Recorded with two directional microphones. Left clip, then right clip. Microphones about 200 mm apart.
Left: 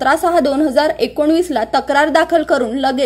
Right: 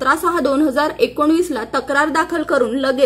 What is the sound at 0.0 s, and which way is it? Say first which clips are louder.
A woman's voice: left 3 dB; 20° left (ahead or behind).